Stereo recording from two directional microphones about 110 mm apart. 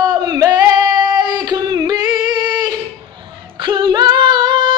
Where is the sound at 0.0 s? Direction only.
35° right (ahead or behind).